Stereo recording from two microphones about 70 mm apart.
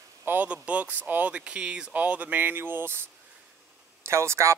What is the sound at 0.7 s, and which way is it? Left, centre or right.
Speech, right.